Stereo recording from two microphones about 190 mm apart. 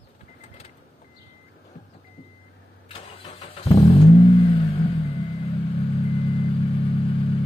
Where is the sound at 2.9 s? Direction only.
35° left (ahead or behind).